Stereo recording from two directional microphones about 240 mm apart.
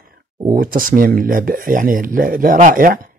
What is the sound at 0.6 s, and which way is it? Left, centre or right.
Speech, right.